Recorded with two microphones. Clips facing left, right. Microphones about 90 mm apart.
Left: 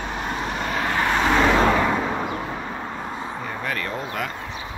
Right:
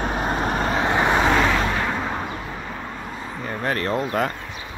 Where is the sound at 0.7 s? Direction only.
20° right (ahead or behind).